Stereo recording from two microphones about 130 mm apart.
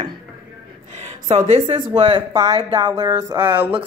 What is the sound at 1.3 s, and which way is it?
Speech, 45° right (ahead or behind).